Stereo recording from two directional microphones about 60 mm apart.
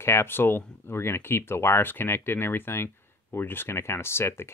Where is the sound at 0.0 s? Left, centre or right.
Left.